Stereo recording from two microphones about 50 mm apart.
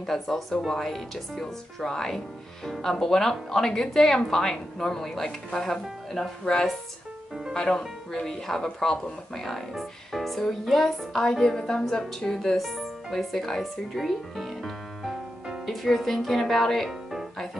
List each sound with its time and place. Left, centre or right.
0.0 s speech: centre